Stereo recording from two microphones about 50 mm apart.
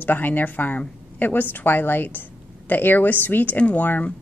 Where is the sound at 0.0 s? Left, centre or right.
Left.